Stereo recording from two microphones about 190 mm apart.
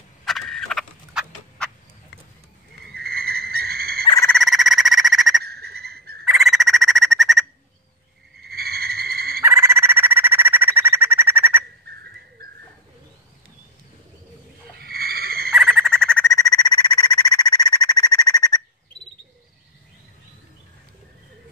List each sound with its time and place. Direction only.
0.2 s fowl: centre (ahead or behind)
2.9 s frog: 55° right (ahead or behind)
4.3 s a sound: centre (ahead or behind)
5.4 s frog: 55° right (ahead or behind)
6.2 s frog: centre (ahead or behind)
8.4 s frog: 55° right (ahead or behind)
9.4 s bird: 15° right (ahead or behind)
12.0 s dog: 60° right (ahead or behind)
14.8 s a sound: 55° right (ahead or behind)
15.5 s owl: centre (ahead or behind)
16.3 s a sound: 20° left (ahead or behind)